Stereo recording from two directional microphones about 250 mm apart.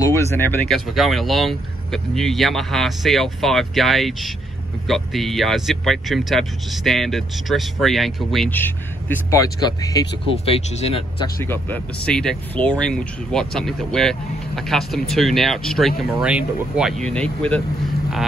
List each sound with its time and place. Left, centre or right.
0.0 s speech: centre
11.4 s speech: centre